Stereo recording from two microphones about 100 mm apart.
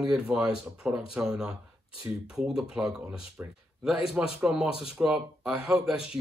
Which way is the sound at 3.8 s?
5° right (ahead or behind).